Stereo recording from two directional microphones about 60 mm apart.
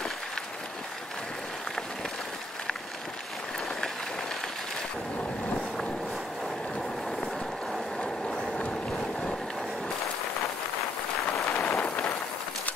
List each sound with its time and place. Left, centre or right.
7.7 s ratchet: centre
8.6 s boat: centre
11.6 s a sound: left